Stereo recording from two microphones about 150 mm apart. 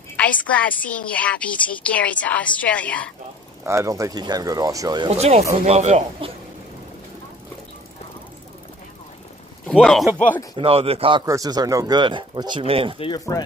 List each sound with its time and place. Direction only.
0.2 s a woman's voice: 10° left (ahead or behind)
3.6 s speech: 20° right (ahead or behind)
5.1 s speech: 45° right (ahead or behind)
9.7 s speech: 5° left (ahead or behind)
10.5 s speech: 40° right (ahead or behind)
11.2 s speech: 25° right (ahead or behind)
13.3 s speech: 25° left (ahead or behind)